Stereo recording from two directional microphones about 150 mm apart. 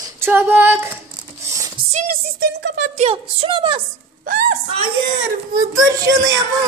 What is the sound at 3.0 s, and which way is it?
Speech, 40° right (ahead or behind).